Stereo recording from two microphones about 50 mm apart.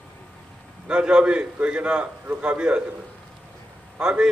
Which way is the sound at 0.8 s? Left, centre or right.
Centre.